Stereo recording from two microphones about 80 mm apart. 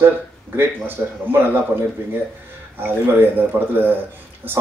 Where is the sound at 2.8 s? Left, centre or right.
Right.